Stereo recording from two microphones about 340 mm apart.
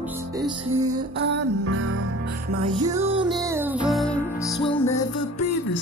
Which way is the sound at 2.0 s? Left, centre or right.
Right.